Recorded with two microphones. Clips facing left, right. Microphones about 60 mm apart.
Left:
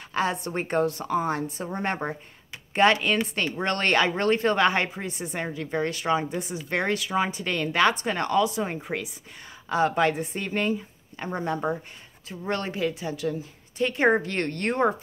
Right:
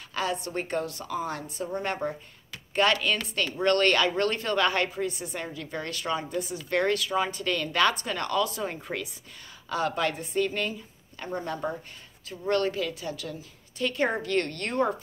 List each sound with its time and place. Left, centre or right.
0.1 s a woman's voice: left
9.7 s speech: left